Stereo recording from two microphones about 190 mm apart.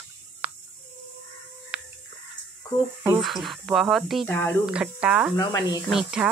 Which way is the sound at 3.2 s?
Centre (ahead or behind).